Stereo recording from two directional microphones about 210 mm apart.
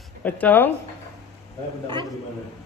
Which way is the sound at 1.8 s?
25° right (ahead or behind).